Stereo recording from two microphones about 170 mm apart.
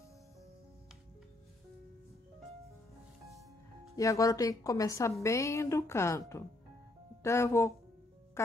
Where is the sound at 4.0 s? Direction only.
20° left (ahead or behind).